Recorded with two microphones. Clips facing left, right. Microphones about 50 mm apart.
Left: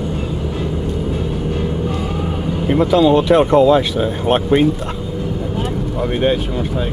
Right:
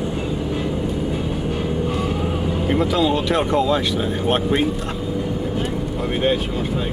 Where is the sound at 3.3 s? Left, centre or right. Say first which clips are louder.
Left 7 dB; centre.